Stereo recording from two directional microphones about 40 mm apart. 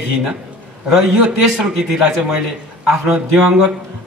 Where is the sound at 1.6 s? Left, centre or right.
Centre.